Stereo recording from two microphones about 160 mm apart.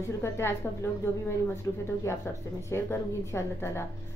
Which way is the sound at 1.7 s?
20° left (ahead or behind).